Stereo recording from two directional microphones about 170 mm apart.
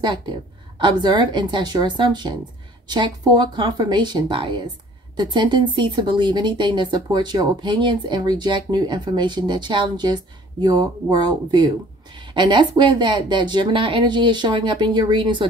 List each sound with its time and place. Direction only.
0.7 s speech: 25° right (ahead or behind)